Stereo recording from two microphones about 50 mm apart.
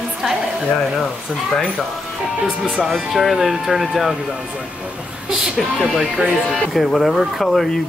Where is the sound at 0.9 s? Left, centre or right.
Centre.